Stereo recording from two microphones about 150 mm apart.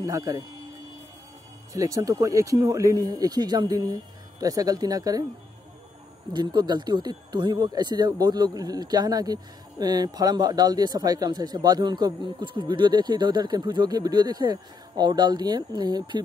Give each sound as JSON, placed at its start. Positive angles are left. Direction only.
{"t": 0.0, "sound": "speech", "side_deg": -20}
{"t": 1.7, "sound": "speech", "side_deg": -20}
{"t": 6.3, "sound": "speech", "side_deg": -30}